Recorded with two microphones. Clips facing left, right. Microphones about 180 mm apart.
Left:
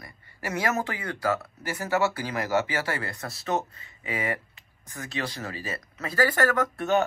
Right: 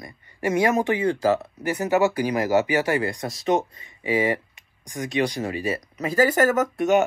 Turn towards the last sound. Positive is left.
turn(degrees=-20)  # may be behind; listen again after turning